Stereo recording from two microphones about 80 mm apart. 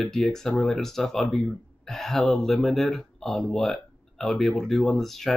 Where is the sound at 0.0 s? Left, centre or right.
Centre.